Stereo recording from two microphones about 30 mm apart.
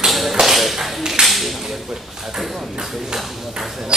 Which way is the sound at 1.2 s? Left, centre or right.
Right.